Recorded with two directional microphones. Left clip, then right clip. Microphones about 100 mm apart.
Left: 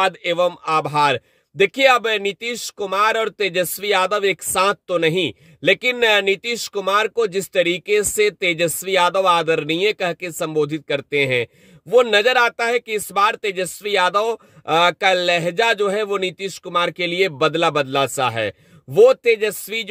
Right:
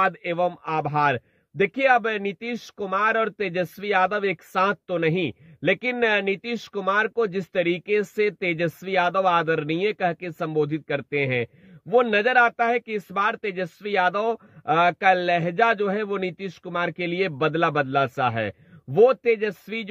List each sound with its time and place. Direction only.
0.2 s speech: 30° left (ahead or behind)